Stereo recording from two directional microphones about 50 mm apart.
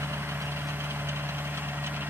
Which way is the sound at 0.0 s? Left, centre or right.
Right.